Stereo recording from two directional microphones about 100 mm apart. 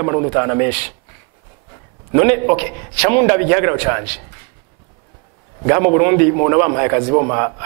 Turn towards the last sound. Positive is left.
turn(degrees=-20)  # may be behind; listen again after turning